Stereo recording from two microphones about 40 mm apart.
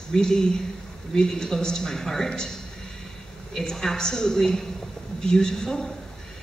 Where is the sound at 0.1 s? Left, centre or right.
Centre.